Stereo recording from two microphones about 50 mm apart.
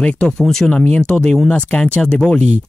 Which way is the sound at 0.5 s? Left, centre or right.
Centre.